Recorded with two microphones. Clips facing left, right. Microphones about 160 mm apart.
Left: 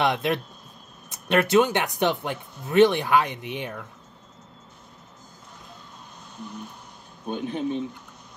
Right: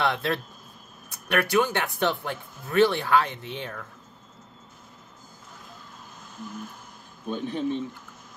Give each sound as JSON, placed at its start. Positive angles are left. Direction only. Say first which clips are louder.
{"t": 0.0, "sound": "speech", "louder": "left 3 dB", "side_deg": 15}
{"t": 6.3, "sound": "a sound", "louder": "even", "side_deg": 0}
{"t": 7.3, "sound": "speech", "louder": "left 1 dB", "side_deg": -40}